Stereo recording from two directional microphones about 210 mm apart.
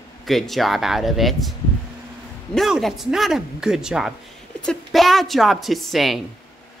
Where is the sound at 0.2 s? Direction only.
Centre (ahead or behind).